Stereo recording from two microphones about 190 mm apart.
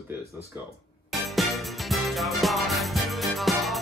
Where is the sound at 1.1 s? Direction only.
Centre (ahead or behind).